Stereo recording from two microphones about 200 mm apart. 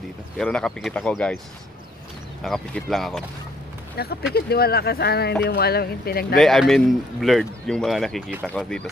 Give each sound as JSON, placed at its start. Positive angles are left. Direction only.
{"t": 0.4, "sound": "a man's voice", "side_deg": 5}
{"t": 2.4, "sound": "a man's voice", "side_deg": 0}
{"t": 3.9, "sound": "speech", "side_deg": 50}
{"t": 6.3, "sound": "a man's voice", "side_deg": 0}